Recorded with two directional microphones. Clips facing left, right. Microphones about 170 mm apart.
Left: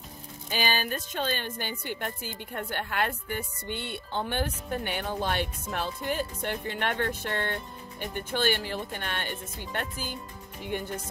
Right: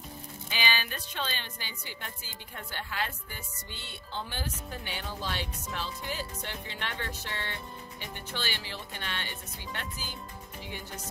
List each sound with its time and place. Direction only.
0.5 s a woman's voice: 45° left (ahead or behind)
10.7 s music: 55° left (ahead or behind)